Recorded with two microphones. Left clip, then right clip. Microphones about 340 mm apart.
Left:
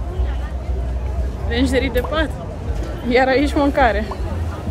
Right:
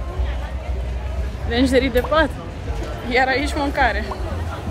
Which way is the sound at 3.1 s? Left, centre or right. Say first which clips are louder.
Left 3 dB; centre.